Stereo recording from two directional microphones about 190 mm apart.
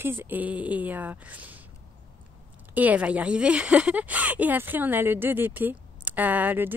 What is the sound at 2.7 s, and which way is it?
Speech, 5° right (ahead or behind).